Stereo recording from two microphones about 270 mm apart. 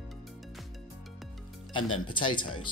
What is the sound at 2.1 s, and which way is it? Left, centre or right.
Speech, centre.